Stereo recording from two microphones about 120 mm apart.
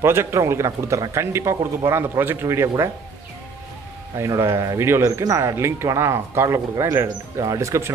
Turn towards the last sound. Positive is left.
turn(degrees=-25)  # may be behind; listen again after turning